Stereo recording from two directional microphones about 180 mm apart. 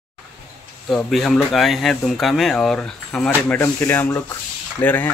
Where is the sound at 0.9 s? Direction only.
Centre (ahead or behind).